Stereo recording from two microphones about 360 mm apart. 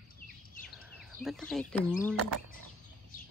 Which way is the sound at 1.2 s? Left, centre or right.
Centre.